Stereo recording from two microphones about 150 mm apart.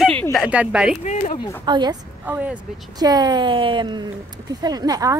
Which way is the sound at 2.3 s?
10° right (ahead or behind).